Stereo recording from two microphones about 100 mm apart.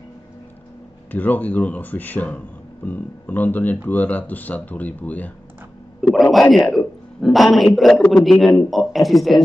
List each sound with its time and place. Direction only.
1.1 s speech: 15° left (ahead or behind)
5.9 s a sound: centre (ahead or behind)
6.3 s speech: 5° left (ahead or behind)